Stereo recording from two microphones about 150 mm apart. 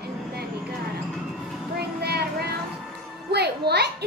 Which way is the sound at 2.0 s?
90° right.